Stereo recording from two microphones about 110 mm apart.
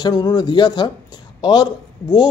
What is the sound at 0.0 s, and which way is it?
Speech, 35° left (ahead or behind).